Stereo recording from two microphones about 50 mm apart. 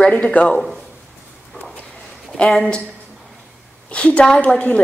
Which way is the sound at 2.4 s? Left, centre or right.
Centre.